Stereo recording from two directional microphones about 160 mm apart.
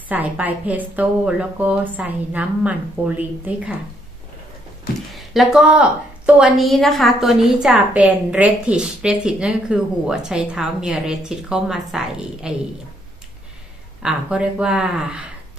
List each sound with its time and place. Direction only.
0.1 s a woman's voice: 10° right (ahead or behind)
5.1 s a woman's voice: centre (ahead or behind)
14.0 s a woman's voice: 5° right (ahead or behind)